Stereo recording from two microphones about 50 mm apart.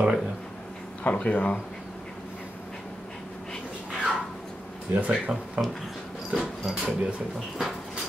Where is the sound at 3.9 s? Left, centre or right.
Centre.